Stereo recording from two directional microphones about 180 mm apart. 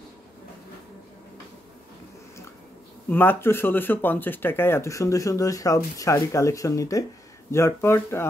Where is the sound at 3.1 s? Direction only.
10° left (ahead or behind).